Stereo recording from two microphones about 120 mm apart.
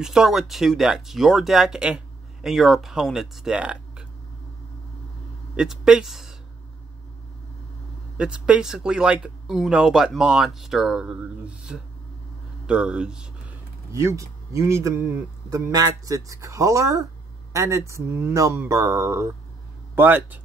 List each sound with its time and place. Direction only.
0.0 s speech: 5° right (ahead or behind)
5.6 s speech: 5° right (ahead or behind)
8.2 s speech: 5° right (ahead or behind)
13.9 s speech: 25° right (ahead or behind)